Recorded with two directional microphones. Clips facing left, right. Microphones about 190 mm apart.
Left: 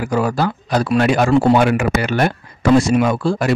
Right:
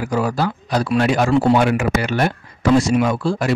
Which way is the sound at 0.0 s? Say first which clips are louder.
Left 2 dB; 55° left (ahead or behind).